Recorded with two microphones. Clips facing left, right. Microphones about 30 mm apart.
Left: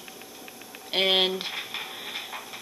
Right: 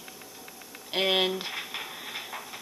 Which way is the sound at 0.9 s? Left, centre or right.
Left.